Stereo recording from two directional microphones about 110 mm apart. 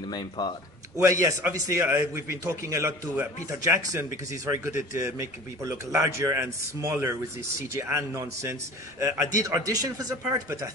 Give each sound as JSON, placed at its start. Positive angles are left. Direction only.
{"t": 0.1, "sound": "speech", "side_deg": 40}
{"t": 0.9, "sound": "speech", "side_deg": -30}